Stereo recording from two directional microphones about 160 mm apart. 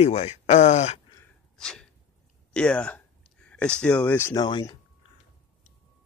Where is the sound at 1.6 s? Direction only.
5° left (ahead or behind).